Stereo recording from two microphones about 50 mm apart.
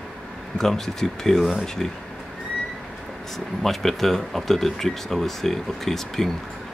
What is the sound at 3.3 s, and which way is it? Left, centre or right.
Speech, centre.